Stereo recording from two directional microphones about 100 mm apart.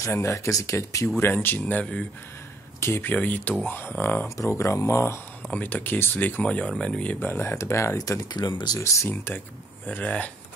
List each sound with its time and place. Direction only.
0.0 s speech: 30° left (ahead or behind)
4.4 s speech: 30° left (ahead or behind)
5.5 s speech: 15° left (ahead or behind)
7.4 s speech: 30° left (ahead or behind)
8.3 s speech: 45° left (ahead or behind)
8.7 s speech: 30° left (ahead or behind)
9.1 s speech: 20° left (ahead or behind)